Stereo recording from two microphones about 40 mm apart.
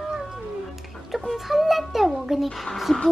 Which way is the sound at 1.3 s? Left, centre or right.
Centre.